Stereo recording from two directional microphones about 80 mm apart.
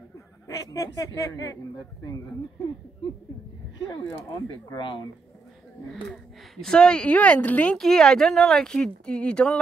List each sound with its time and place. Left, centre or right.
0.7 s speech: left
4.7 s speech: left
6.5 s speech: centre
7.7 s speech: centre